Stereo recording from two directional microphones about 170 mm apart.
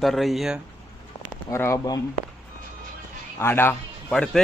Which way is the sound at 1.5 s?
15° left (ahead or behind).